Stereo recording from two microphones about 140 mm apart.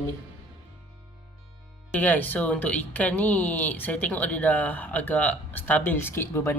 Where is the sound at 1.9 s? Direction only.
10° left (ahead or behind).